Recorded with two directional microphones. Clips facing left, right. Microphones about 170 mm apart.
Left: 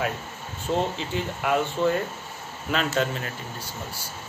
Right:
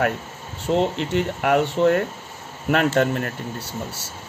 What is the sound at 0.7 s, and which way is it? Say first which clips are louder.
Speech: right 5 dB; 65° right (ahead or behind).